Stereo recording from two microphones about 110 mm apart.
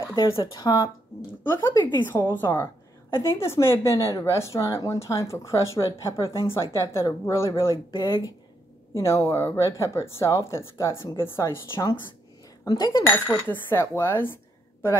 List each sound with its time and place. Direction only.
0.7 s speech: 35° left (ahead or behind)
1.4 s a woman's voice: 20° left (ahead or behind)
12.6 s speech: 40° left (ahead or behind)
13.0 s a woman's voice: 15° left (ahead or behind)